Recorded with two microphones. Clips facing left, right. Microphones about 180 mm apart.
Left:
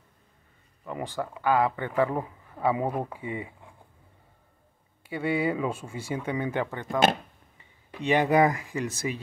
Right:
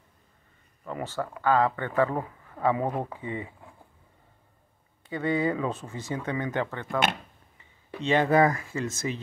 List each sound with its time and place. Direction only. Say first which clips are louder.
0.8 s speech: even; 15° left (ahead or behind)
5.0 s speech: even; 10° left (ahead or behind)
8.0 s speech: even; 15° left (ahead or behind)